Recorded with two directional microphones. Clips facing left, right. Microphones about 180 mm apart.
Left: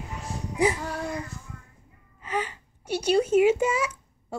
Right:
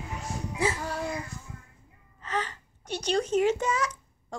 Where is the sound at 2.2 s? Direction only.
10° left (ahead or behind).